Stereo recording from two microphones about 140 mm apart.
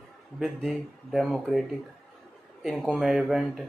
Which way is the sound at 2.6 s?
Centre (ahead or behind).